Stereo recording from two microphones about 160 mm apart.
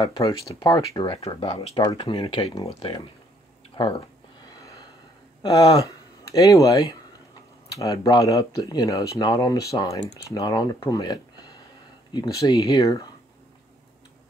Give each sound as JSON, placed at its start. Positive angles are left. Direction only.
{"t": 0.0, "sound": "speech", "side_deg": 25}
{"t": 1.8, "sound": "speech", "side_deg": 25}
{"t": 4.6, "sound": "gasp", "side_deg": 20}
{"t": 5.4, "sound": "speech", "side_deg": 35}
{"t": 5.8, "sound": "speech", "side_deg": 20}